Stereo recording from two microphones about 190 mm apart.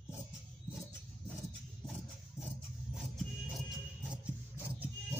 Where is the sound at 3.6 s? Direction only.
5° right (ahead or behind).